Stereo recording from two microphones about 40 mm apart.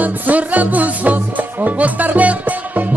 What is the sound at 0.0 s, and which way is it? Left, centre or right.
Music, right.